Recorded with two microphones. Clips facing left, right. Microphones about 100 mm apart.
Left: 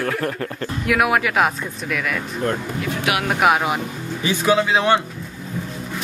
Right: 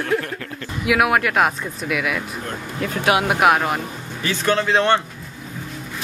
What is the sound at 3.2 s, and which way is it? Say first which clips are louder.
Speech: right 1 dB; centre (ahead or behind).